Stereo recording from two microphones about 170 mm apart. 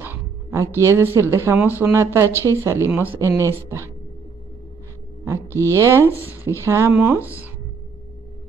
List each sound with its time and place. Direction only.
0.0 s a sound: 15° right (ahead or behind)
0.7 s a woman's voice: 15° right (ahead or behind)
5.7 s a woman's voice: 15° right (ahead or behind)